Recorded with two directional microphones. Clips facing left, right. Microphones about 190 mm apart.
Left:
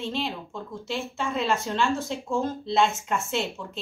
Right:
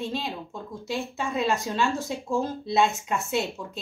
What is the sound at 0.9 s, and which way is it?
A woman's voice, 15° right (ahead or behind).